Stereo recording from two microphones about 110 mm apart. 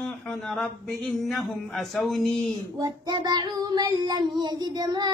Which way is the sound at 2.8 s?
40° right (ahead or behind).